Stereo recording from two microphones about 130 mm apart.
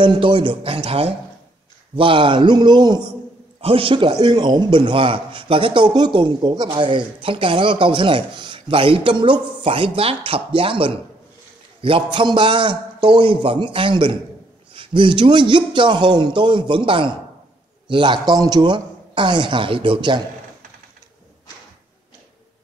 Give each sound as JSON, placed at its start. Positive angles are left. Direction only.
{"t": 0.0, "sound": "a man's voice", "side_deg": -40}